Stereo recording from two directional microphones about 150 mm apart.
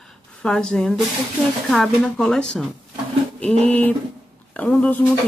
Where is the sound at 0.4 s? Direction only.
5° left (ahead or behind).